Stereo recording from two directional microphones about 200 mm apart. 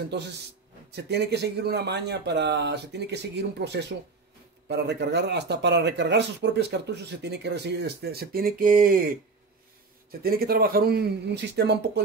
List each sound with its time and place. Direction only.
0.9 s speech: 55° right (ahead or behind)
10.2 s speech: 50° right (ahead or behind)